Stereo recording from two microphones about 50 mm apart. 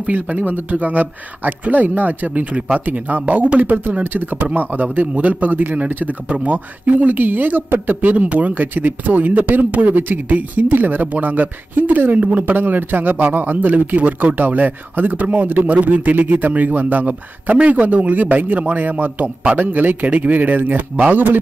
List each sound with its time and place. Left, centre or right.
0.0 s speech: right